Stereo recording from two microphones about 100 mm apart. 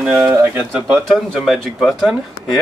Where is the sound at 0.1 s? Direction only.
20° right (ahead or behind).